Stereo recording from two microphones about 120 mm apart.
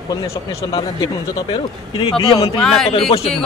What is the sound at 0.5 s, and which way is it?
Speech, 25° left (ahead or behind).